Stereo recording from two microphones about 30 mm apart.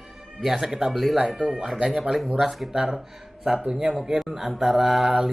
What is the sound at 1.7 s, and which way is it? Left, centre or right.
Speech, right.